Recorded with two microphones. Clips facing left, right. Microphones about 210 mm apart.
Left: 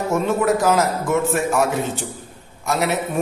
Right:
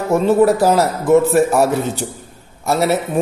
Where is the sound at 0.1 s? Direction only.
35° right (ahead or behind).